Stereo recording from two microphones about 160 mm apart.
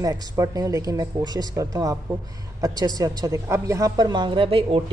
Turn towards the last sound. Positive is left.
turn(degrees=-35)  # may be behind; listen again after turning